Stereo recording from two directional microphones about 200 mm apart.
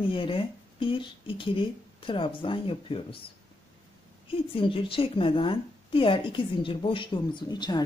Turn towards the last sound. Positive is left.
turn(degrees=20)  # may be behind; listen again after turning